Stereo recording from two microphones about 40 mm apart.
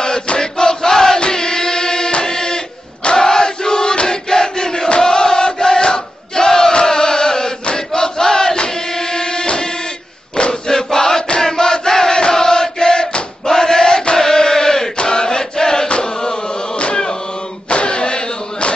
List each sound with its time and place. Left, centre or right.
0.4 s battle cry: centre
1.2 s a sound: centre
7.6 s chant: centre
10.3 s crowd: centre
11.4 s battle cry: centre
12.2 s chant: centre
15.0 s choir: centre
15.9 s a sound: centre